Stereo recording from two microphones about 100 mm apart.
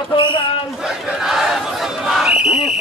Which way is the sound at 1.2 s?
5° right (ahead or behind).